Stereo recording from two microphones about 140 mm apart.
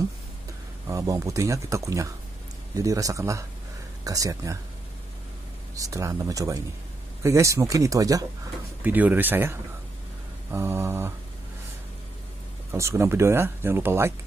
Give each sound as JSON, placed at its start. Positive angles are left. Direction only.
{"t": 0.8, "sound": "speech", "side_deg": -25}
{"t": 5.8, "sound": "speech", "side_deg": -25}
{"t": 8.8, "sound": "speech", "side_deg": -10}
{"t": 12.7, "sound": "speech", "side_deg": -20}